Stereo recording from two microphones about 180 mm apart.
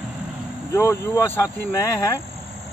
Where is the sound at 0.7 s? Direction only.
15° left (ahead or behind).